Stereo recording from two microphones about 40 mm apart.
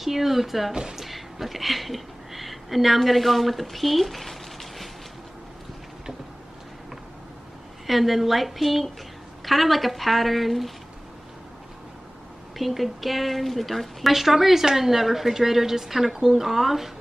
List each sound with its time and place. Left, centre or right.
0.0 s a woman's voice: centre
7.8 s a woman's voice: centre
12.5 s a woman's voice: centre